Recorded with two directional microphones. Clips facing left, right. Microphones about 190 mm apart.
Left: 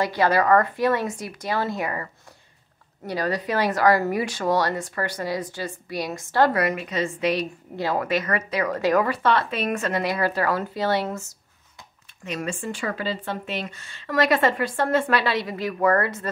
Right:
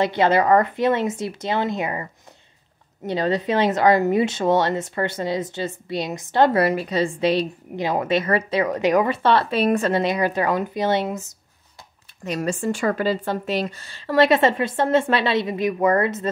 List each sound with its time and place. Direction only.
0.0 s a woman's voice: 25° right (ahead or behind)
7.7 s a woman's voice: 20° right (ahead or behind)
12.3 s a woman's voice: 40° right (ahead or behind); by 16.3 s 20° right (ahead or behind)